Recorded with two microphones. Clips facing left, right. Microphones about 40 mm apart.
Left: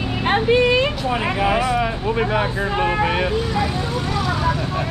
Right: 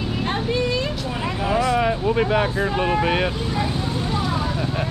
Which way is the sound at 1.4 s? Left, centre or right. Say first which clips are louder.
Left 1 dB; left.